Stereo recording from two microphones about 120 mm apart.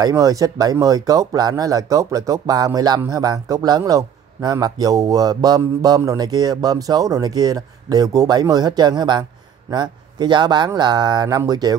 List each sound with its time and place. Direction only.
0.0 s speech: 30° right (ahead or behind)